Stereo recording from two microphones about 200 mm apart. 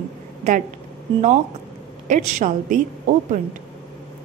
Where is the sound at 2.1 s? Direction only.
40° right (ahead or behind).